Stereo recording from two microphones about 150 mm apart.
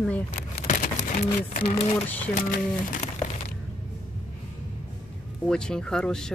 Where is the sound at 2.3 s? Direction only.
70° left (ahead or behind).